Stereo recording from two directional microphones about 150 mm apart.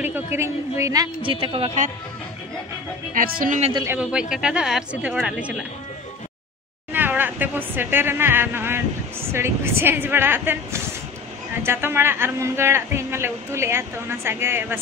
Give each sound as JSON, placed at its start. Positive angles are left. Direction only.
{"t": 0.0, "sound": "a woman's voice", "side_deg": -15}
{"t": 3.2, "sound": "speech", "side_deg": -65}
{"t": 3.8, "sound": "speech", "side_deg": -10}
{"t": 6.9, "sound": "speech", "side_deg": -15}